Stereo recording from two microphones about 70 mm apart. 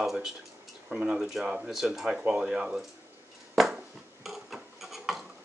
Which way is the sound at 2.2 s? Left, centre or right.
Centre.